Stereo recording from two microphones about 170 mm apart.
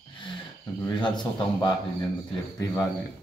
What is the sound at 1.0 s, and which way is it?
Speech, 25° left (ahead or behind).